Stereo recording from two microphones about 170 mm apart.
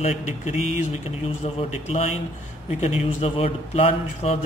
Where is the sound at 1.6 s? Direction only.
40° left (ahead or behind).